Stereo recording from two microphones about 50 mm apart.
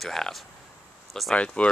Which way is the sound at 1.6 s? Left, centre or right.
Left.